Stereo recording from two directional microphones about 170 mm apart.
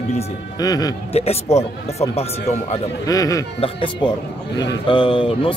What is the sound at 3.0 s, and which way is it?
Speech, 20° left (ahead or behind).